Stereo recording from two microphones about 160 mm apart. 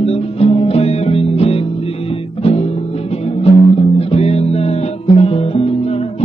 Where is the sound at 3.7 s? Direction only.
40° left (ahead or behind).